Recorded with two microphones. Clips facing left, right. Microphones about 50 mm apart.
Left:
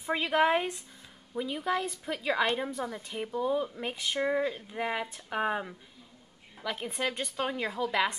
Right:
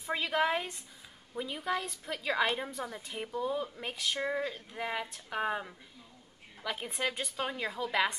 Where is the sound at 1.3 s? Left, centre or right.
Centre.